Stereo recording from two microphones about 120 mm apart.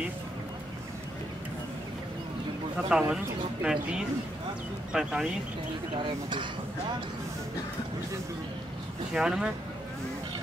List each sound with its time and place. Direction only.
2.9 s speech: 5° right (ahead or behind)
5.9 s speech: 40° right (ahead or behind)
9.1 s speech: 5° right (ahead or behind)